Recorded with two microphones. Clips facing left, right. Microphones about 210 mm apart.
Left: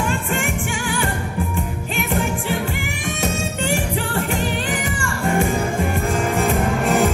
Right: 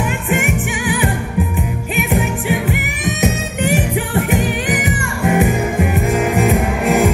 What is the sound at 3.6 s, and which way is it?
Music, 15° right (ahead or behind).